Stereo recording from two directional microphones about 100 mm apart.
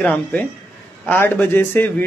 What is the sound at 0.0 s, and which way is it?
A man's voice, 15° left (ahead or behind).